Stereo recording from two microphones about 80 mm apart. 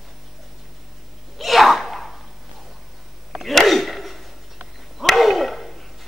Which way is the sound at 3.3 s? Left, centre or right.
Centre.